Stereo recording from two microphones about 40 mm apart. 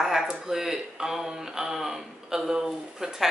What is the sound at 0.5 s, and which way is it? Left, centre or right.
A man's voice, centre.